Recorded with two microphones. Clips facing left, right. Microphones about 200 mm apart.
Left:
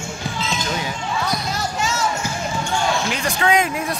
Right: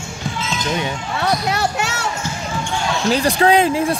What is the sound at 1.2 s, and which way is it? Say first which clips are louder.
Basketball bounce: right 8 dB; 70° right (ahead or behind).